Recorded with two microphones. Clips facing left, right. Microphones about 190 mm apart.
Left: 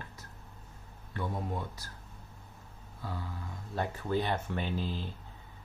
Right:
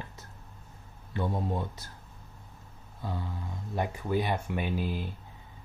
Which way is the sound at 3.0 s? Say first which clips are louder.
Right 4 dB; 20° right (ahead or behind).